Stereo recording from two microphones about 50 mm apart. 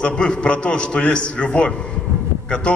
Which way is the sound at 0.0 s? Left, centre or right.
Centre.